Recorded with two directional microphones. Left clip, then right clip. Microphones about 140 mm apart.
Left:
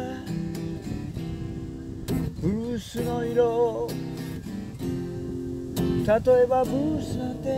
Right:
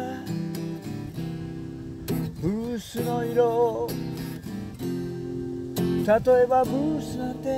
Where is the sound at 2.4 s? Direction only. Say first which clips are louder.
Right 1 dB; 15° left (ahead or behind).